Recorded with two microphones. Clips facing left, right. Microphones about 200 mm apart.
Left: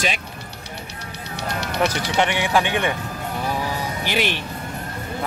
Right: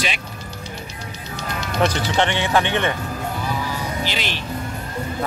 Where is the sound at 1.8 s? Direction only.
10° left (ahead or behind).